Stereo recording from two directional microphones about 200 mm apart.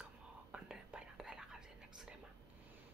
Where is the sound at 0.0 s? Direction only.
5° right (ahead or behind).